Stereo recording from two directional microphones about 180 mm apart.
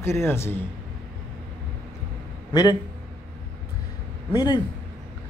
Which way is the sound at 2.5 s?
20° left (ahead or behind).